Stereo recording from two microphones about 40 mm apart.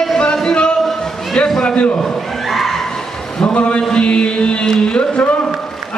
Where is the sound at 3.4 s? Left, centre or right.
Left.